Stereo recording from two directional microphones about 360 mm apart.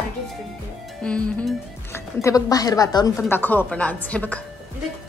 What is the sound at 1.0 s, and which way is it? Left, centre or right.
A woman's voice, centre.